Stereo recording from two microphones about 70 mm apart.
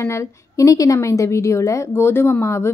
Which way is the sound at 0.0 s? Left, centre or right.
Left.